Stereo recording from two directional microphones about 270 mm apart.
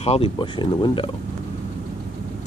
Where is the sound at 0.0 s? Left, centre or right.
Left.